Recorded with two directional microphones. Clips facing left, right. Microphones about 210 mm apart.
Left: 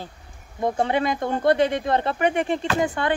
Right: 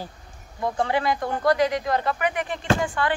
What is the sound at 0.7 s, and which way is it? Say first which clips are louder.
Speech: even; 20° left (ahead or behind).